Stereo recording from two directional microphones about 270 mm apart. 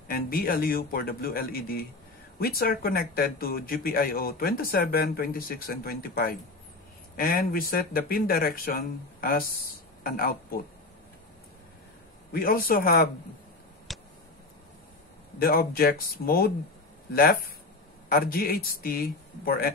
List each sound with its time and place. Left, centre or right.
0.1 s speech: left
12.3 s speech: left
13.9 s a sound: centre
15.4 s speech: left